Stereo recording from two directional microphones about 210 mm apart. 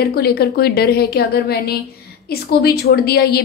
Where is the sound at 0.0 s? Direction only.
45° left (ahead or behind).